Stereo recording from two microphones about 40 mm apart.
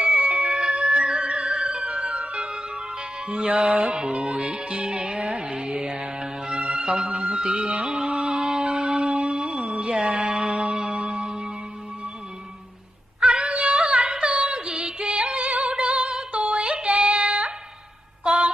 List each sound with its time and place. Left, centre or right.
0.0 s music: right
13.2 s yodeling: right
13.9 s music: right
15.4 s music: right
15.7 s female singing: right
18.2 s a sound: right